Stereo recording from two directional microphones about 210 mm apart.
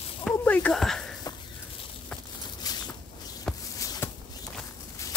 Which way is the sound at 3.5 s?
Centre (ahead or behind).